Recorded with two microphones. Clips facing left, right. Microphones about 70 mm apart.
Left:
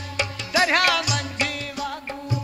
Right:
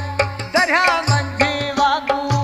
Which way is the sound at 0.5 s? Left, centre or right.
Right.